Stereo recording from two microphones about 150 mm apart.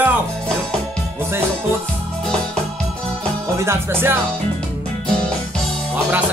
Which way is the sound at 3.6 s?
15° right (ahead or behind).